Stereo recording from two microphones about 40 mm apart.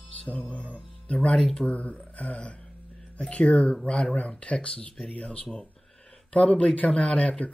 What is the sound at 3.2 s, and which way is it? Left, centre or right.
Speech, left.